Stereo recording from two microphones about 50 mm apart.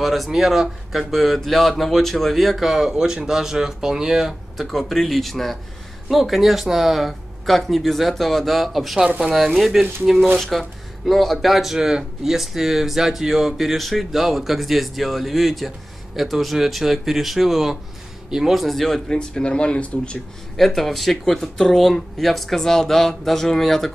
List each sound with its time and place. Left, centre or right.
0.0 s speech: centre
19.0 s speech: centre
20.5 s speech: centre